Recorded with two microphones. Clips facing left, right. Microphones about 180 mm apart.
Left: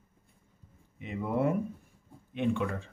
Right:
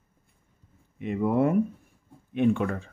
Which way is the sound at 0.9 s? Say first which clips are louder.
Right 7 dB; 55° right (ahead or behind).